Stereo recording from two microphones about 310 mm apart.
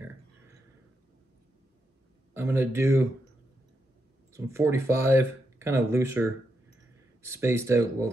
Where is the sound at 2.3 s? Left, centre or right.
Centre.